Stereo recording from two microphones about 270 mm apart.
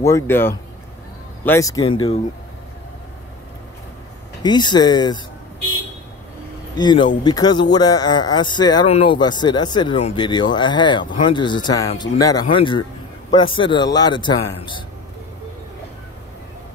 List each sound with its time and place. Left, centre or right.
0.0 s a man's voice: centre
4.4 s a man's voice: centre
6.8 s a man's voice: centre